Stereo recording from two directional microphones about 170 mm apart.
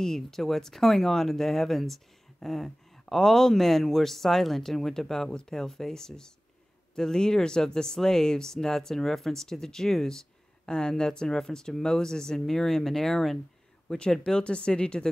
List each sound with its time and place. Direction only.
0.0 s speech: centre (ahead or behind)